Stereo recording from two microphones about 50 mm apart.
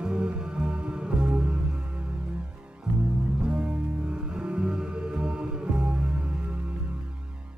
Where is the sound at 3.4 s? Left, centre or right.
Centre.